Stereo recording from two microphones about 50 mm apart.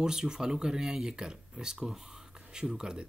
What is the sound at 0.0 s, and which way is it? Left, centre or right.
Speech, centre.